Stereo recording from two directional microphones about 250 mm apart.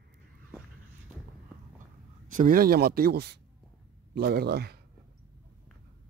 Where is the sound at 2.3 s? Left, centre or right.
Right.